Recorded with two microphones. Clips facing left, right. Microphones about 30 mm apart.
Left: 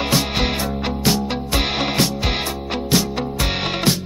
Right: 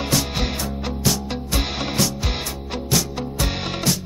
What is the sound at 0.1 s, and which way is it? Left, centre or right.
Music, left.